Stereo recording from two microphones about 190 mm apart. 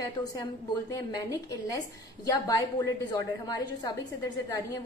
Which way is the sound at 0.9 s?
20° left (ahead or behind).